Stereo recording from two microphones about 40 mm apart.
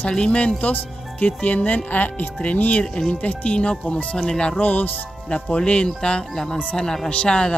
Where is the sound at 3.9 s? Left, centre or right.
Left.